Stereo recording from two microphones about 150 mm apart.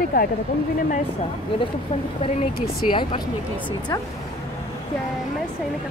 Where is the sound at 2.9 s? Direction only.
35° left (ahead or behind).